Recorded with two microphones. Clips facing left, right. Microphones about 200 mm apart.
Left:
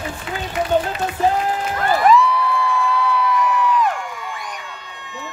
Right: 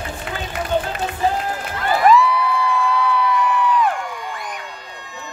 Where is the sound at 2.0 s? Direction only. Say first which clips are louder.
Right 2 dB; centre (ahead or behind).